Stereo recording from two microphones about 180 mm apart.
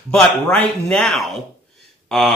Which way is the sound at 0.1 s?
5° left (ahead or behind).